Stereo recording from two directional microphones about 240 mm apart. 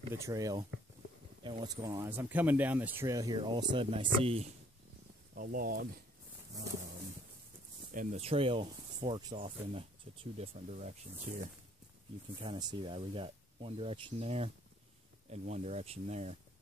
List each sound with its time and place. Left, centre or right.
0.1 s speech: centre
5.3 s speech: right
7.9 s speech: right
12.4 s speech: centre